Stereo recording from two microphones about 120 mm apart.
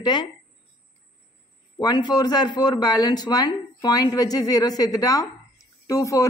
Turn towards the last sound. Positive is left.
turn(degrees=25)  # may be behind; listen again after turning